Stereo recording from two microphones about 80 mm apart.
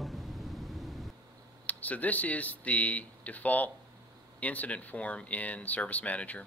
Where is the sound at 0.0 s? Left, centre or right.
Centre.